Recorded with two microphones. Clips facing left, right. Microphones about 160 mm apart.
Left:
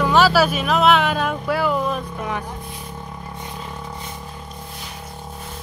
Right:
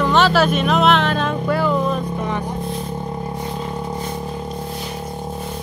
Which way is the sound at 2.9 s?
30° right (ahead or behind).